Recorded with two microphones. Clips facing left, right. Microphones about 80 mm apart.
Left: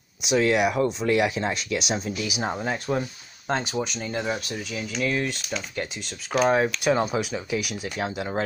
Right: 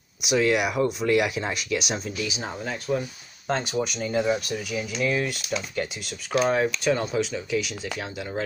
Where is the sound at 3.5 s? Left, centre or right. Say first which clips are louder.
Right 1 dB; centre.